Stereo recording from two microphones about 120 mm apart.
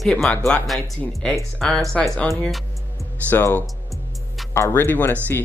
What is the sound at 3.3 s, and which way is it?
Speech, 15° left (ahead or behind).